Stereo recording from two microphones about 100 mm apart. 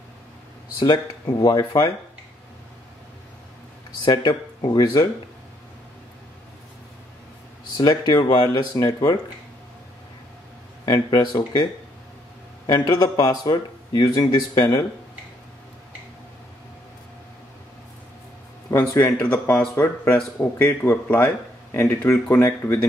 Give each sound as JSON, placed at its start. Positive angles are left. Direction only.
{"t": 0.7, "sound": "speech", "side_deg": 40}
{"t": 4.0, "sound": "speech", "side_deg": 45}
{"t": 7.7, "sound": "speech", "side_deg": 45}
{"t": 10.9, "sound": "speech", "side_deg": 50}
{"t": 12.6, "sound": "speech", "side_deg": 45}
{"t": 18.7, "sound": "speech", "side_deg": 25}